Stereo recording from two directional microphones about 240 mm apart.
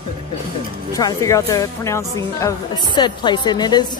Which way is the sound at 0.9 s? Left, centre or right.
Centre.